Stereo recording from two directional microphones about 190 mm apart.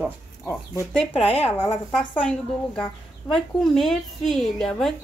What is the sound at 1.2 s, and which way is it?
Speech, 30° left (ahead or behind).